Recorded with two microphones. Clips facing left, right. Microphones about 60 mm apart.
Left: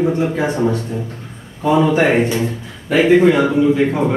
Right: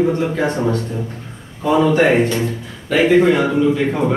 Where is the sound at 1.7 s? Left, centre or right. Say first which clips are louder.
Right 1 dB; centre.